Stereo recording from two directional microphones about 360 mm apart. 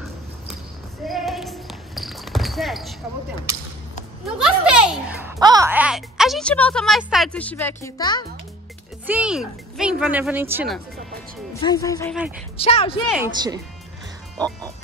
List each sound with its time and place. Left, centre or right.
1.0 s basketball bounce: centre
4.4 s a child's voice: centre
9.0 s speech: centre
11.6 s speech: centre
13.1 s speech: centre